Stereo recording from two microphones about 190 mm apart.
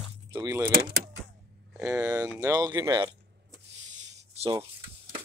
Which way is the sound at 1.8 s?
5° right (ahead or behind).